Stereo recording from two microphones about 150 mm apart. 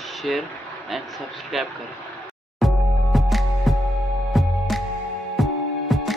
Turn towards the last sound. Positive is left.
turn(degrees=0)  # may be behind; listen again after turning